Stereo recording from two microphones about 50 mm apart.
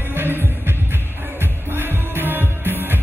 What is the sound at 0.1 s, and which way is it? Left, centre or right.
Music, right.